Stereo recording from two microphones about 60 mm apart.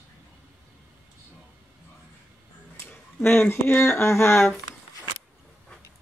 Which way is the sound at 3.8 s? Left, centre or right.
Left.